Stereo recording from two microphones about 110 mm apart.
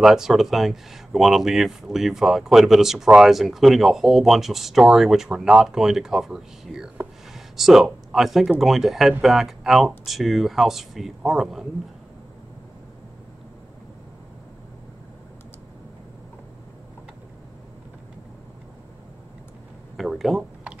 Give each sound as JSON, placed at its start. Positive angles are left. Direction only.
{"t": 0.0, "sound": "speech", "side_deg": -5}
{"t": 20.0, "sound": "speech", "side_deg": 0}